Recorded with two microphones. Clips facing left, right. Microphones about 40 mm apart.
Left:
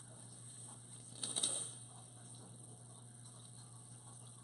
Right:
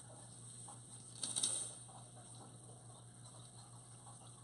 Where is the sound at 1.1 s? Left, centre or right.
Centre.